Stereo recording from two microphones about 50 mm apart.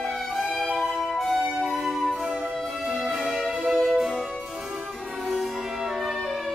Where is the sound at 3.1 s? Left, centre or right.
Centre.